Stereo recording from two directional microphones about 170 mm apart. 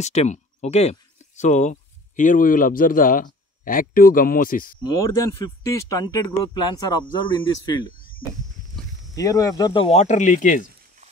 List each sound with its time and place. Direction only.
0.0 s speech: 40° left (ahead or behind)
4.9 s speech: 15° left (ahead or behind)
9.1 s speech: 20° left (ahead or behind); by 10.7 s 50° left (ahead or behind)